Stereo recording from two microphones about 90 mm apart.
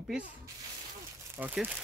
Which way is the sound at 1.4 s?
20° right (ahead or behind).